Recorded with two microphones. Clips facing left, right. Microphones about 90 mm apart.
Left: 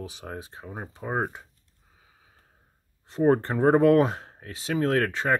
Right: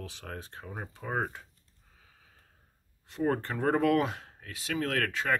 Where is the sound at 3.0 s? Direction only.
35° left (ahead or behind).